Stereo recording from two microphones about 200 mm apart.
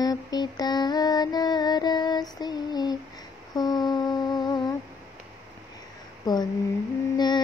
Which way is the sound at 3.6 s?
20° left (ahead or behind).